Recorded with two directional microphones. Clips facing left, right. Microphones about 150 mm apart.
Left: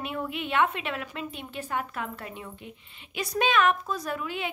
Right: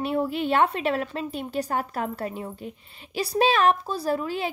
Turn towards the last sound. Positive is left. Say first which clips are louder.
# right 6 dB
turn(degrees=-35)  # may be behind; listen again after turning